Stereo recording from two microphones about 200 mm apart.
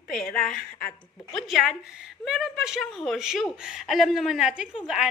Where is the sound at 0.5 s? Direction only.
45° left (ahead or behind).